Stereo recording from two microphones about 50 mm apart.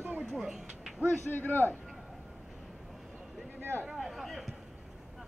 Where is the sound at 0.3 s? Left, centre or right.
Centre.